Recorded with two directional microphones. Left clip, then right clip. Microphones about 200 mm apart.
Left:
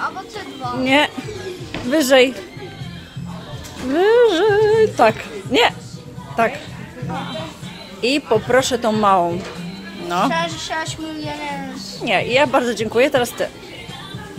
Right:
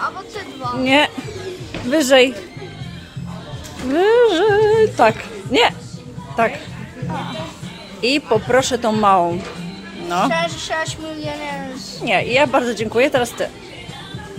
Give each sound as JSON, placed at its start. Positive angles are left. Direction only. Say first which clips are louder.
{"t": 0.7, "sound": "speech", "louder": "right 1 dB", "side_deg": 0}
{"t": 3.9, "sound": "speech", "louder": "even", "side_deg": 0}
{"t": 8.0, "sound": "speech", "louder": "even", "side_deg": 5}
{"t": 10.3, "sound": "speech", "louder": "right 1 dB", "side_deg": -30}
{"t": 12.0, "sound": "speech", "louder": "even", "side_deg": 0}